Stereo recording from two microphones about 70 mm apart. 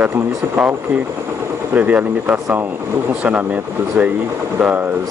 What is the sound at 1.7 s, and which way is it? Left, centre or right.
Speech, right.